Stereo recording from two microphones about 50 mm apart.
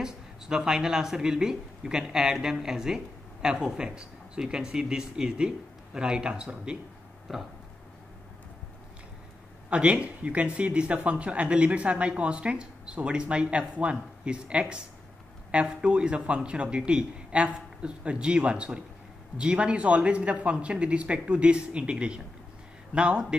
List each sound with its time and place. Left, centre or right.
0.0 s speech: centre
9.7 s speech: right
15.8 s speech: right